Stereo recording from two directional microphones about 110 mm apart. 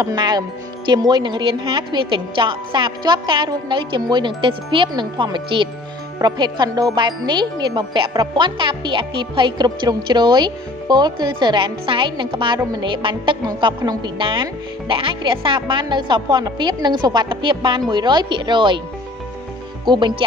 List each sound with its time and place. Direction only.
0.0 s a woman's voice: 40° right (ahead or behind)
19.8 s speech: 45° right (ahead or behind)